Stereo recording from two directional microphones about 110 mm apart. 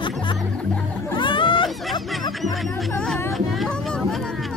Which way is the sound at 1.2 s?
50° left (ahead or behind).